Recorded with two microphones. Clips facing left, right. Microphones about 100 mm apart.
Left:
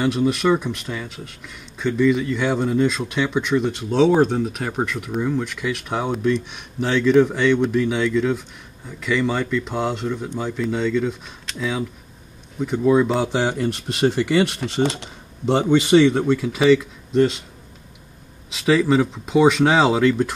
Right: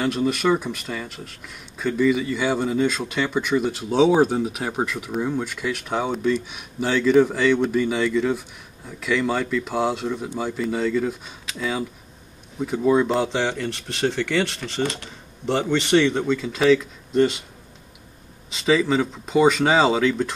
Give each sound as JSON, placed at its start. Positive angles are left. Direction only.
{"t": 0.0, "sound": "a man's voice", "side_deg": 0}
{"t": 13.4, "sound": "speech", "side_deg": 15}
{"t": 18.5, "sound": "a man's voice", "side_deg": 0}